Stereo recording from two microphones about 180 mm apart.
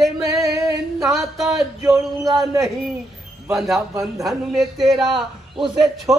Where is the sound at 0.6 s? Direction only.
20° right (ahead or behind).